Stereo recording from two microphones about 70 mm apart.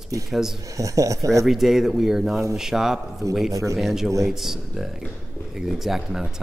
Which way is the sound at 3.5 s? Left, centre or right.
Right.